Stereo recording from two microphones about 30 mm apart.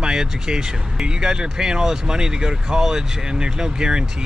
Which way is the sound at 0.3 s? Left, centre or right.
Right.